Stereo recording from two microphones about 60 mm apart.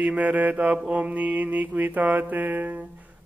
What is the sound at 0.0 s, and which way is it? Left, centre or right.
Mantra, right.